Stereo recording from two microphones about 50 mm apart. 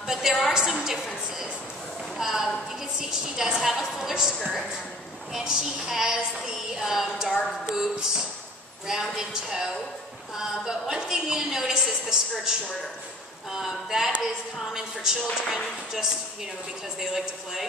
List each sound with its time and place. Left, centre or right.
0.0 s a woman's voice: centre
2.1 s a sound: centre
3.0 s a woman's voice: centre